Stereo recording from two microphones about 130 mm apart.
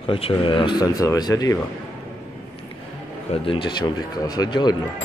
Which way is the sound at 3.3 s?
45° left (ahead or behind).